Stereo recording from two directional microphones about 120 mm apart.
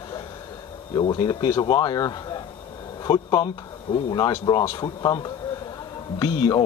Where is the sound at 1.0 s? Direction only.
35° left (ahead or behind).